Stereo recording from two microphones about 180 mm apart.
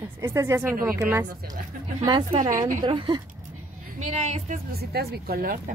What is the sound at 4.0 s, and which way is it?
Speech, 40° right (ahead or behind).